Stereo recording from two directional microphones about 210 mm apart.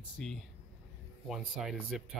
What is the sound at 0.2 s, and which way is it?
Speech, 5° left (ahead or behind).